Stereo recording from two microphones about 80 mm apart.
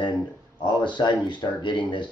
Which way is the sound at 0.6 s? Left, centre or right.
Left.